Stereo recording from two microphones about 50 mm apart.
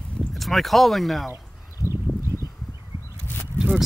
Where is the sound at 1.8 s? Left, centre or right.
Left.